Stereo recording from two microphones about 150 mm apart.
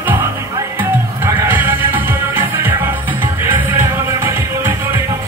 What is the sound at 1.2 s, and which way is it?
Music, 15° right (ahead or behind).